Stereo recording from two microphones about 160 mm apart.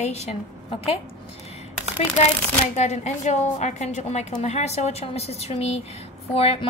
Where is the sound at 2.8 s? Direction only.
45° left (ahead or behind).